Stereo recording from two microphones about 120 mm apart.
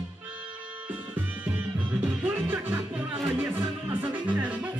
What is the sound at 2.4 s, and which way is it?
Music, 15° right (ahead or behind).